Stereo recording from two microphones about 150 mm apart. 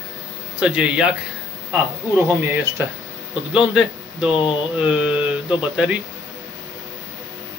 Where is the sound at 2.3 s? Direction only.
15° right (ahead or behind).